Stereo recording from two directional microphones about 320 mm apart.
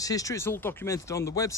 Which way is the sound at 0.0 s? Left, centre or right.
Centre.